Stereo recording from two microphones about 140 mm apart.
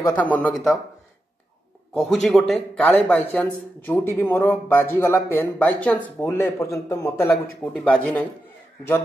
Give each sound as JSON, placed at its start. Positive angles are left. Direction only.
{"t": 0.0, "sound": "a man's voice", "side_deg": 10}
{"t": 2.0, "sound": "a man's voice", "side_deg": 0}
{"t": 7.2, "sound": "a man's voice", "side_deg": 10}